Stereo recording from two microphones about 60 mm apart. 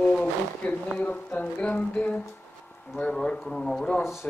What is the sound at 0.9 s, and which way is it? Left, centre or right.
Speech, left.